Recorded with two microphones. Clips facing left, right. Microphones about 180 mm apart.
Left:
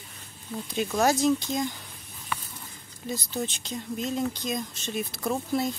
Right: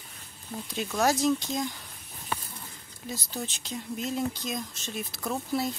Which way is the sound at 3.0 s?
Centre (ahead or behind).